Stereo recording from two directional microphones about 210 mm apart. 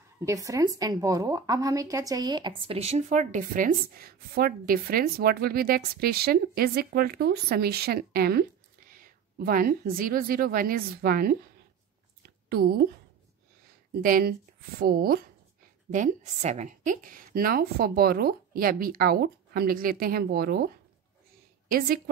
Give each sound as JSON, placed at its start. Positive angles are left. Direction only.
{"t": 0.2, "sound": "a woman's voice", "side_deg": -15}
{"t": 12.4, "sound": "a woman's voice", "side_deg": -45}
{"t": 14.0, "sound": "a woman's voice", "side_deg": -45}